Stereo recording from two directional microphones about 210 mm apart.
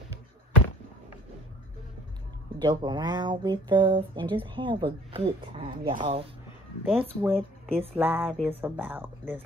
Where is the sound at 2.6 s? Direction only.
20° right (ahead or behind).